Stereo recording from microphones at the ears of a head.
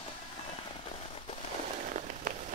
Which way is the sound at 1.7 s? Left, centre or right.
Right.